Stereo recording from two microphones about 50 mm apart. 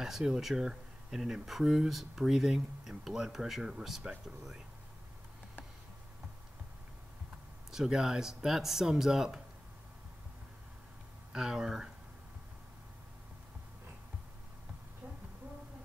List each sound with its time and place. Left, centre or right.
0.0 s speech: centre
7.7 s speech: centre
11.3 s speech: centre